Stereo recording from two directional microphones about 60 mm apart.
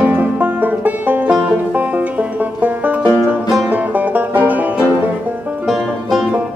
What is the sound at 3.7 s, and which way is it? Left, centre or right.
Music, right.